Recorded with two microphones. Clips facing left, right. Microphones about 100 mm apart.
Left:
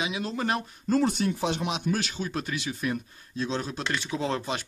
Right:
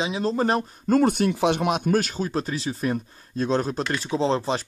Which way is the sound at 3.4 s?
45° right (ahead or behind).